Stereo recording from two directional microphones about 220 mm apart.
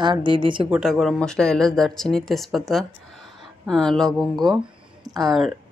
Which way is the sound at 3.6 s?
Centre (ahead or behind).